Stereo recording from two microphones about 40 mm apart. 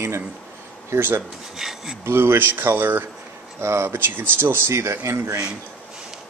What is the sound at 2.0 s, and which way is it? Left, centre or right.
Speech, right.